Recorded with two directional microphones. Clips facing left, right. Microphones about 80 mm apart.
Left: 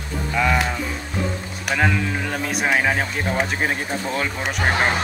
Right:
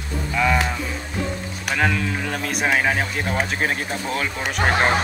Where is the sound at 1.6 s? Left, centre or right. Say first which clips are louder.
Left 1 dB; centre.